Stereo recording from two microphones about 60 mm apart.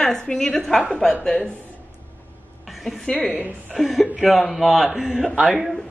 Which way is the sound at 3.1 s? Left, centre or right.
Left.